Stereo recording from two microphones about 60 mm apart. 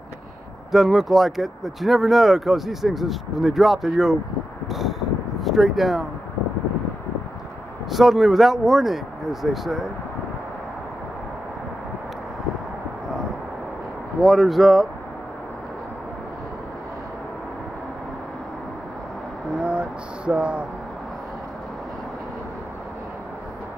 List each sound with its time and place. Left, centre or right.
0.7 s speech: centre
4.6 s a sound: centre
5.4 s speech: centre
7.9 s speech: centre
14.2 s speech: centre
19.6 s a sound: centre